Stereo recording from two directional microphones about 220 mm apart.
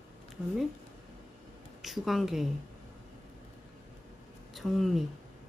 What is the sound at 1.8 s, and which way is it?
Speech, centre (ahead or behind).